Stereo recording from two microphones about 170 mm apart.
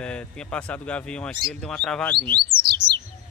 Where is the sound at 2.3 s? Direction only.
25° right (ahead or behind).